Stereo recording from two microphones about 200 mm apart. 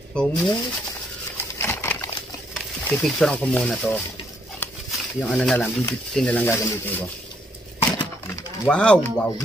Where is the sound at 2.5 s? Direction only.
Centre (ahead or behind).